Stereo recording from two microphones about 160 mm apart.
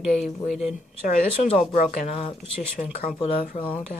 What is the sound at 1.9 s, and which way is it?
Speech, 45° left (ahead or behind).